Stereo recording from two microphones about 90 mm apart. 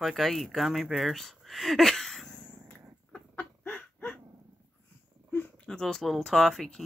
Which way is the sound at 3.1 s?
15° left (ahead or behind).